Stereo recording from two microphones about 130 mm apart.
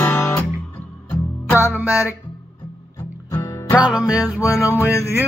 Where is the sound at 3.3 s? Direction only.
25° left (ahead or behind).